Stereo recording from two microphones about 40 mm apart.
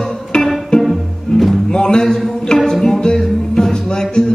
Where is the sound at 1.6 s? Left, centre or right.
Centre.